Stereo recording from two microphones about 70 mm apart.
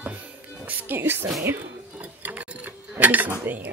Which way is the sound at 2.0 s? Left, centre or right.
Right.